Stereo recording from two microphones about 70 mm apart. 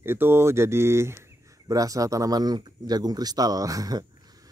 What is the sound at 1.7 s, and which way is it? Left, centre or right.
Speech, right.